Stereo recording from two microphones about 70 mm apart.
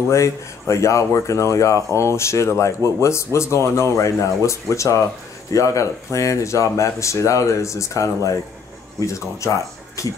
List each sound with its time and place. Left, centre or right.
0.1 s speech: left